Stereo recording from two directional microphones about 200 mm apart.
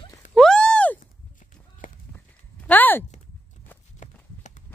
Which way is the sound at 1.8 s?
40° left (ahead or behind).